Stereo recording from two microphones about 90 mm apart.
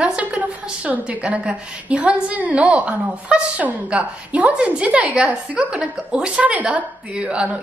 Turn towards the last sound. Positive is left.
turn(degrees=-10)  # may be behind; listen again after turning